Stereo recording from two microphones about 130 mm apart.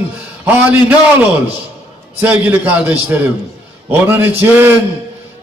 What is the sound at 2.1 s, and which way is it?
Speech, 15° right (ahead or behind).